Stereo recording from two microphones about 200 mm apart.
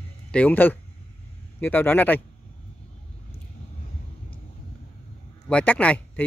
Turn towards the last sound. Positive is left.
turn(degrees=5)  # may be behind; listen again after turning